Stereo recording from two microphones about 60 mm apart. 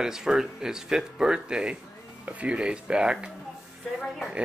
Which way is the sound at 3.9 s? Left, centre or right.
Centre.